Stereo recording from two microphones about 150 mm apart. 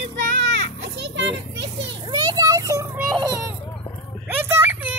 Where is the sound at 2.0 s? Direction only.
25° right (ahead or behind).